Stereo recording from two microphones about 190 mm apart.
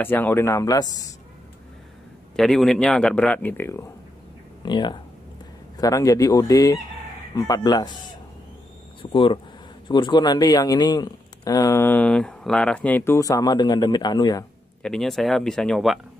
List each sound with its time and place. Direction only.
0.0 s speech: 10° left (ahead or behind)
2.3 s speech: centre (ahead or behind)
4.6 s speech: 25° left (ahead or behind)
9.0 s speech: 25° left (ahead or behind)
14.8 s speech: centre (ahead or behind)